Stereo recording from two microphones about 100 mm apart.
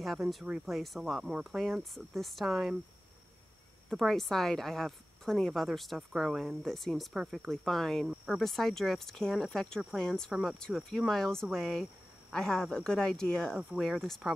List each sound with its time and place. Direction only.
0.0 s a woman's voice: centre (ahead or behind)
3.9 s a woman's voice: centre (ahead or behind)